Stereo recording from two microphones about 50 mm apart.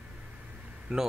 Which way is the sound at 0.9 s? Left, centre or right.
Centre.